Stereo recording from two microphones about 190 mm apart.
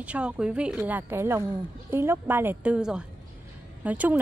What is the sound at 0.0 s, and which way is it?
Speech, 5° right (ahead or behind).